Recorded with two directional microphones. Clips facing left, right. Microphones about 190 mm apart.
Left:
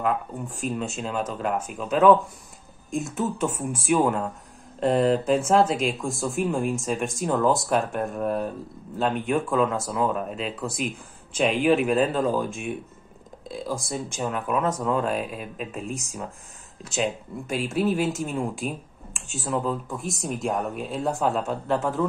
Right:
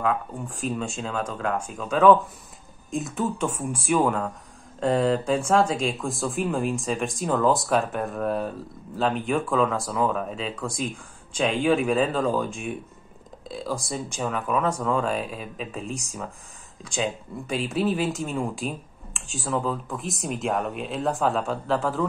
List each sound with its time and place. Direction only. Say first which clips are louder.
0.1 s speech: even; centre (ahead or behind)
17.5 s speech: left 1 dB; centre (ahead or behind)